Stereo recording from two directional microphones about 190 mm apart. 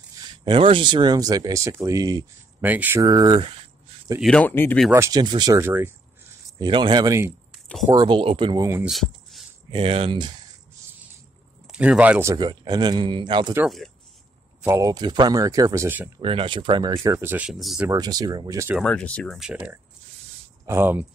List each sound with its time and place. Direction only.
0.1 s speech: 25° right (ahead or behind)
4.2 s speech: 5° left (ahead or behind)
4.9 s speech: 15° right (ahead or behind)
6.6 s speech: 25° right (ahead or behind)
7.5 s a sound: centre (ahead or behind)
7.9 s speech: 25° right (ahead or behind)
8.8 s a sound: centre (ahead or behind)
9.7 s speech: 30° right (ahead or behind)
11.6 s speech: 5° right (ahead or behind); by 13.6 s 25° right (ahead or behind)
14.6 s speech: 15° right (ahead or behind)
16.2 s speech: 30° right (ahead or behind); by 17.8 s centre (ahead or behind)
17.8 s speech: 20° right (ahead or behind)
18.8 s speech: 5° left (ahead or behind); by 21.1 s 10° right (ahead or behind)